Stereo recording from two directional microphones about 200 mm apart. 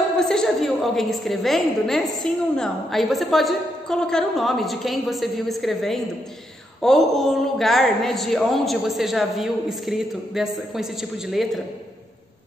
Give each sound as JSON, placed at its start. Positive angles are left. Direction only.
{"t": 0.2, "sound": "a woman's voice", "side_deg": 0}